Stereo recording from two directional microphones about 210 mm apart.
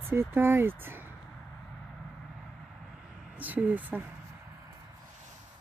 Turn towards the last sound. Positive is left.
turn(degrees=-10)  # may be behind; listen again after turning